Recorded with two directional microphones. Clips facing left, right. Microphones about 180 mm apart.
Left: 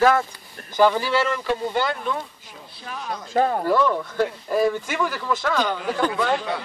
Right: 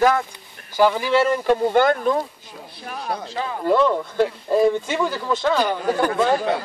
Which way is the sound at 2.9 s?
35° right (ahead or behind).